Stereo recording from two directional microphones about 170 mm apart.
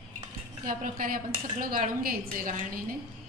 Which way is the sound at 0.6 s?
50° right (ahead or behind).